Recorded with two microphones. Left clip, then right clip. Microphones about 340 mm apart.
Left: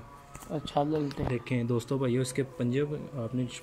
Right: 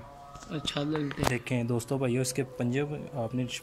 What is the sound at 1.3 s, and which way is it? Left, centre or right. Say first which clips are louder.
Speech: even; centre.